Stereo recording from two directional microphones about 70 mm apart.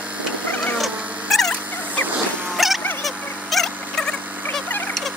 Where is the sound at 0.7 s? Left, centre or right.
Centre.